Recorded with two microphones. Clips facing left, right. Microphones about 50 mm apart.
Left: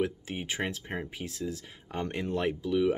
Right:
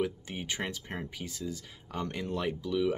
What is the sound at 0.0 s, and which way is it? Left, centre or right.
Speech, left.